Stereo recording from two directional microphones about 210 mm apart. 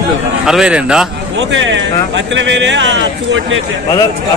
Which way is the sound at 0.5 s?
5° right (ahead or behind).